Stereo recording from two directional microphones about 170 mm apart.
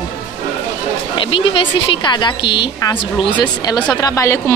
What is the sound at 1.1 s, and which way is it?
A woman's voice, 30° left (ahead or behind).